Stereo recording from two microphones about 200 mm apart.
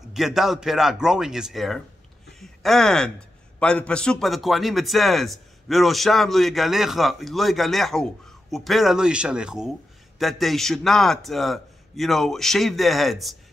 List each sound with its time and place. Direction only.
0.1 s a man's voice: centre (ahead or behind)